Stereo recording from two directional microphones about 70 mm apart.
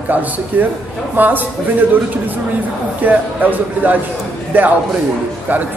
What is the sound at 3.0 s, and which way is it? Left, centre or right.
Speech, right.